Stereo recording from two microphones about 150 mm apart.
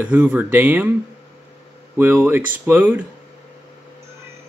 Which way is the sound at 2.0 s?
15° right (ahead or behind).